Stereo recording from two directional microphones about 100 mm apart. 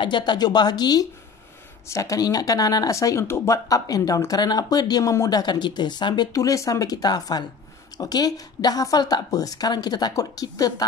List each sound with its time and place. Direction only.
0.0 s a woman's voice: 50° left (ahead or behind)